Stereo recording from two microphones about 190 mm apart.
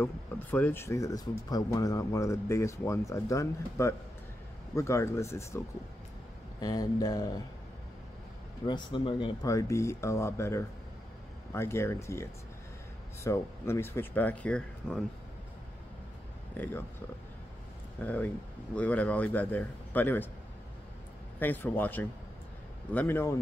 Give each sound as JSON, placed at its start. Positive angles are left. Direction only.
{"t": 0.0, "sound": "speech", "side_deg": 10}
{"t": 6.6, "sound": "speech", "side_deg": 20}
{"t": 8.6, "sound": "speech", "side_deg": 25}
{"t": 16.5, "sound": "speech", "side_deg": 10}
{"t": 18.0, "sound": "speech", "side_deg": 10}
{"t": 21.4, "sound": "speech", "side_deg": 10}